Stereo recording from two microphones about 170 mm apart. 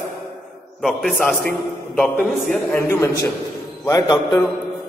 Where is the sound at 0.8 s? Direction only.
Centre (ahead or behind).